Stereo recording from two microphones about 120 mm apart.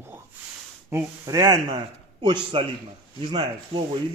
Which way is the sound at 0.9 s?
25° right (ahead or behind).